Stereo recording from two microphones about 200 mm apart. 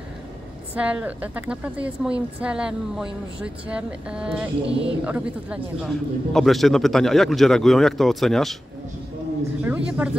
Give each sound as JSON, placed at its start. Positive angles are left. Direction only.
{"t": 0.7, "sound": "a man's voice", "side_deg": -5}
{"t": 4.6, "sound": "speech", "side_deg": -65}
{"t": 5.0, "sound": "a man's voice", "side_deg": -5}
{"t": 9.7, "sound": "speech", "side_deg": -10}